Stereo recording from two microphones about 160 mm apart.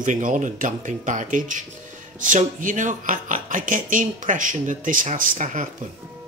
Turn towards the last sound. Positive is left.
turn(degrees=-50)  # may be behind; listen again after turning